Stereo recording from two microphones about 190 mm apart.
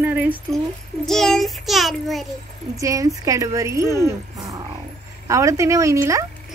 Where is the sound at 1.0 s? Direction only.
Centre (ahead or behind).